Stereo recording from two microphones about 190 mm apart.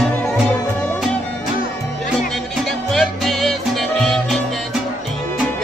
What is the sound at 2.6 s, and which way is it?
Music, centre (ahead or behind).